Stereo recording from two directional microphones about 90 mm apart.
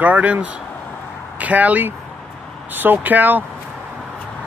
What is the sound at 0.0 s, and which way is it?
Speech, 15° right (ahead or behind).